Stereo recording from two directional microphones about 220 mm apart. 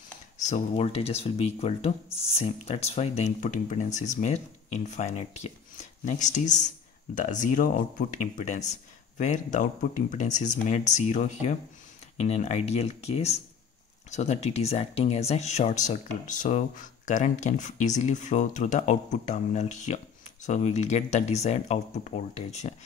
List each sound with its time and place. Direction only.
0.4 s speech: 30° left (ahead or behind)